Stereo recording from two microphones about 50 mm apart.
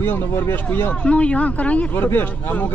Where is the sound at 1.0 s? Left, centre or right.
Left.